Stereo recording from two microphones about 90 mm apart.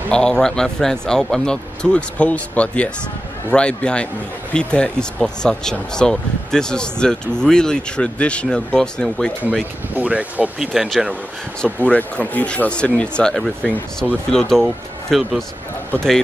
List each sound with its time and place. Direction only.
0.1 s speech: 10° left (ahead or behind)
9.9 s speech: 15° right (ahead or behind)
10.6 s speech: centre (ahead or behind)
11.6 s speech: 15° left (ahead or behind)